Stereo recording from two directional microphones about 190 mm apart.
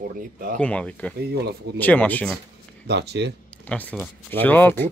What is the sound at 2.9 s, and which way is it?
Speech, 65° right (ahead or behind).